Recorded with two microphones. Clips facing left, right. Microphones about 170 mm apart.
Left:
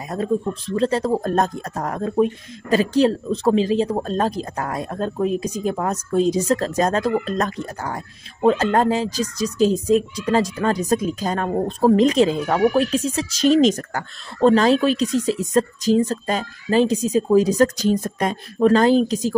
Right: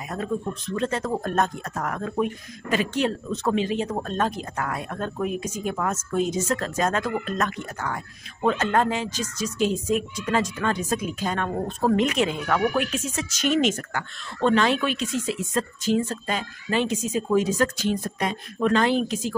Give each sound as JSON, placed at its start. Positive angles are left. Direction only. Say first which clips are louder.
{"t": 0.1, "sound": "speech", "louder": "left 6 dB", "side_deg": 30}